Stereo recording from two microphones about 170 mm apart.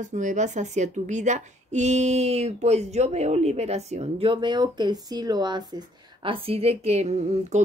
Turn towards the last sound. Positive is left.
turn(degrees=-40)  # may be behind; listen again after turning